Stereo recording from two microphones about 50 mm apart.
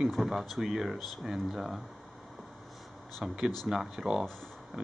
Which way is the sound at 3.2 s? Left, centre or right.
Centre.